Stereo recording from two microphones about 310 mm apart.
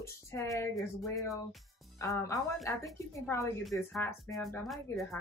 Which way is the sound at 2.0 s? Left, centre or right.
Centre.